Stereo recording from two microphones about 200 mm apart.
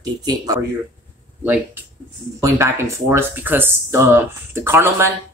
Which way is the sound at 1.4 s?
5° right (ahead or behind).